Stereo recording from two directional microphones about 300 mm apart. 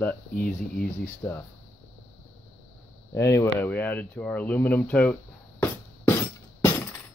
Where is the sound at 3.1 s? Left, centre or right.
Centre.